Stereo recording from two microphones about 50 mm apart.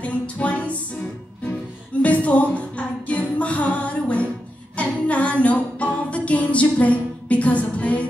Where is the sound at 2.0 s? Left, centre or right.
Left.